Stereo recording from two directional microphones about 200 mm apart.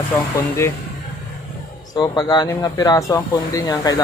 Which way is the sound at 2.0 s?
20° left (ahead or behind).